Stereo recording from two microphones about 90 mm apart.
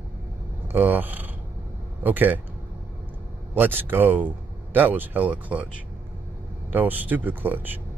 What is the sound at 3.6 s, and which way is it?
Speech, 25° right (ahead or behind).